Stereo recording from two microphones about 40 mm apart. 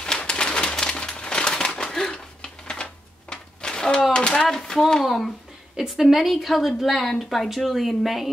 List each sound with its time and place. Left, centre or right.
0.3 s bird: left
1.8 s a sound: centre
5.0 s a woman's voice: centre